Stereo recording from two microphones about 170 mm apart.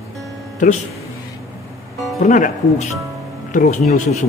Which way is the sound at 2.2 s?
45° left (ahead or behind).